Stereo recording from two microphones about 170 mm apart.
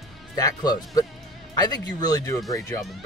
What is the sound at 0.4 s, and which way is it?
Speech, 20° left (ahead or behind).